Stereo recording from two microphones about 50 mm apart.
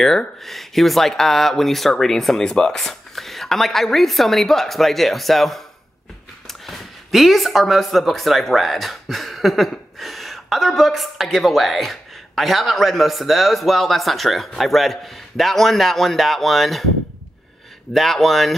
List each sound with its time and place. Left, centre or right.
0.4 s speech: centre
17.9 s speech: centre